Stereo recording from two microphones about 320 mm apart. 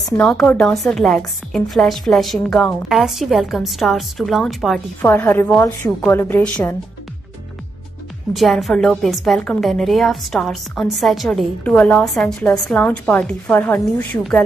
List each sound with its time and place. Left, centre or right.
0.2 s a woman's voice: centre
8.4 s a woman's voice: centre